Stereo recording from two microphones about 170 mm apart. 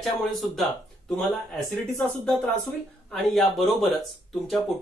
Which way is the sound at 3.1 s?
Centre (ahead or behind).